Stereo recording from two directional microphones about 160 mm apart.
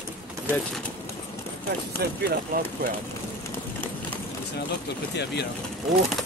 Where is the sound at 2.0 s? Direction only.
75° right (ahead or behind).